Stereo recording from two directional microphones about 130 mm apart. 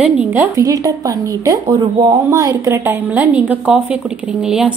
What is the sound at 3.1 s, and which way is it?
Speech, 10° right (ahead or behind).